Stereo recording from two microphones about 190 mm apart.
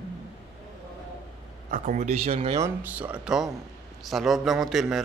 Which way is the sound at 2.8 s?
5° right (ahead or behind).